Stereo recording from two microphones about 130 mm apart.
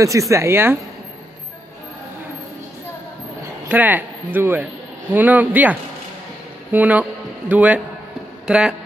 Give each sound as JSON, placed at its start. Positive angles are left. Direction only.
{"t": 0.0, "sound": "speech", "side_deg": -25}
{"t": 3.6, "sound": "a man's voice", "side_deg": -15}